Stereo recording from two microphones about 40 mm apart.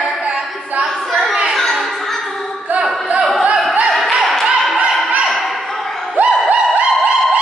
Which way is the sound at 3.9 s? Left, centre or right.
Centre.